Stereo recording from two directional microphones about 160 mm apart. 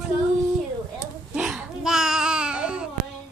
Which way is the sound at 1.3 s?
5° right (ahead or behind).